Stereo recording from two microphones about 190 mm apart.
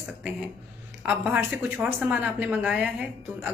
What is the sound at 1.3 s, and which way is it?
A woman's voice, 5° right (ahead or behind).